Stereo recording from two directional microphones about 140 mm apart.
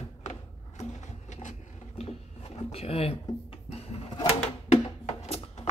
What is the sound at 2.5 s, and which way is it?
Speech, 45° left (ahead or behind).